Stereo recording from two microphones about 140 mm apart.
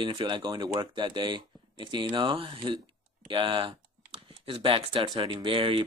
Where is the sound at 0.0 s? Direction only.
35° right (ahead or behind).